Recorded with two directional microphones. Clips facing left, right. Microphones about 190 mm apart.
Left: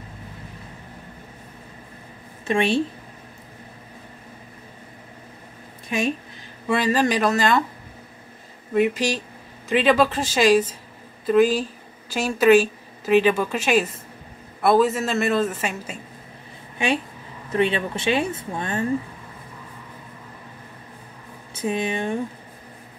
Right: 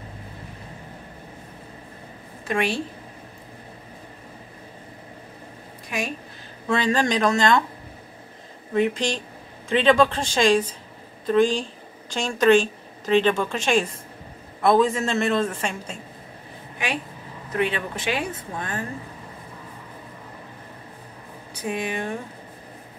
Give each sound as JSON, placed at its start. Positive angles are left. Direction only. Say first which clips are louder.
{"t": 2.4, "sound": "a woman's voice", "louder": "left 4 dB", "side_deg": 25}
{"t": 5.9, "sound": "speech", "louder": "left 5 dB", "side_deg": 25}
{"t": 6.7, "sound": "a woman's voice", "louder": "left 1 dB", "side_deg": 10}
{"t": 8.7, "sound": "a woman's voice", "louder": "left 2 dB", "side_deg": 5}
{"t": 16.7, "sound": "a woman's voice", "louder": "left 5 dB", "side_deg": 25}
{"t": 21.5, "sound": "speech", "louder": "left 3 dB", "side_deg": 25}